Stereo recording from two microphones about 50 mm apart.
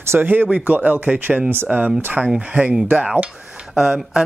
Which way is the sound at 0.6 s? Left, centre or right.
Right.